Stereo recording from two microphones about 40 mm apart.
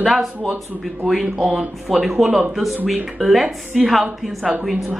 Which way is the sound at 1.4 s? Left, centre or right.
Centre.